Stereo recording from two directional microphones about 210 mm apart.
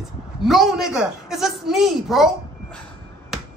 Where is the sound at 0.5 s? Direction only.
Centre (ahead or behind).